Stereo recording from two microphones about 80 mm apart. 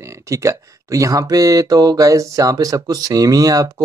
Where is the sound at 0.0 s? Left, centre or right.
Right.